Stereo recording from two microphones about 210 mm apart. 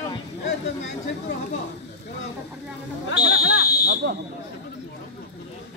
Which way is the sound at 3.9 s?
65° right (ahead or behind).